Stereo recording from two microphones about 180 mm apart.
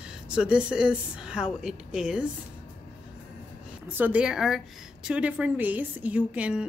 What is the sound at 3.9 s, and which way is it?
A woman's voice, 10° right (ahead or behind).